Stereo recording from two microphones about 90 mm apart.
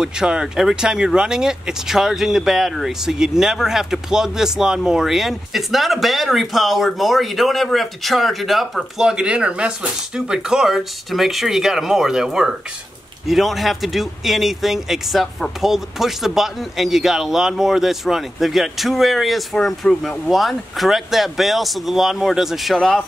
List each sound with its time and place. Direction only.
0.0 s speech: 5° right (ahead or behind)